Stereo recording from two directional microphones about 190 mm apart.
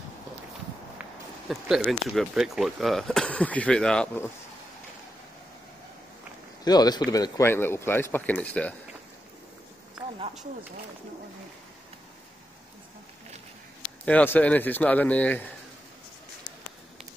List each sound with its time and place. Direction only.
1.5 s speech: centre (ahead or behind)
6.6 s speech: 20° left (ahead or behind)
14.0 s speech: 10° left (ahead or behind)